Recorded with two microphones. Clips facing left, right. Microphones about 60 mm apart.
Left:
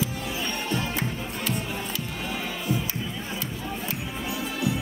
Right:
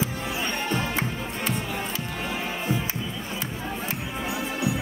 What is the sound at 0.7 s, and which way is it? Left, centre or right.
Music, right.